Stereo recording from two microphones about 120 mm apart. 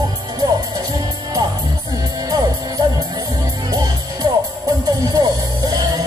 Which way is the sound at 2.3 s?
30° right (ahead or behind).